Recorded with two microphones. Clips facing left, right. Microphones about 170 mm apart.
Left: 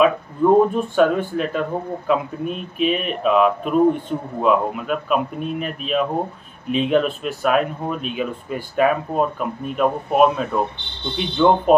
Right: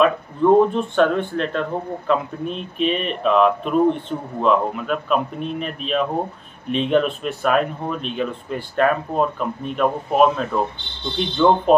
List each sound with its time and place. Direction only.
0.0 s speech: 5° left (ahead or behind)